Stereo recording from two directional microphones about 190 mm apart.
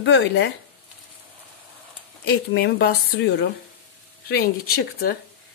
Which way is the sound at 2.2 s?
65° left (ahead or behind).